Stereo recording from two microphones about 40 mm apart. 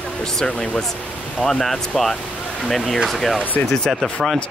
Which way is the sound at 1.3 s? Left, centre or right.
Centre.